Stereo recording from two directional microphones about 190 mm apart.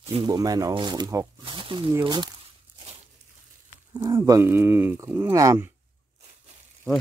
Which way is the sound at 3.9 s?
20° right (ahead or behind).